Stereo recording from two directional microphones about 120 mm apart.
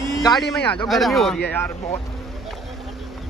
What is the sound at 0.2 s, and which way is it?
Speech, 30° left (ahead or behind).